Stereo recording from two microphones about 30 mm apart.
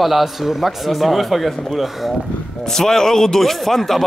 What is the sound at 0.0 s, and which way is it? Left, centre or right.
Speech, centre.